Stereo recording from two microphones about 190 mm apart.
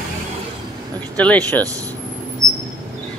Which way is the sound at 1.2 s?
10° left (ahead or behind).